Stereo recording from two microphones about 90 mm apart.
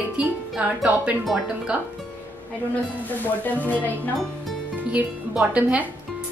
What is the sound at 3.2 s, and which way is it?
Speech, 20° left (ahead or behind).